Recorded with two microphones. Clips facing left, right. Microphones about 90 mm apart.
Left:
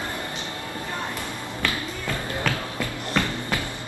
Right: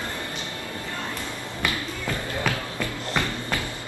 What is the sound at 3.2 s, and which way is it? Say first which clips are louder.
Music: left 2 dB; 15° right (ahead or behind).